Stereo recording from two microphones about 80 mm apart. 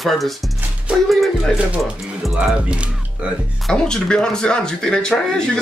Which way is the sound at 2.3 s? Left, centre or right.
Centre.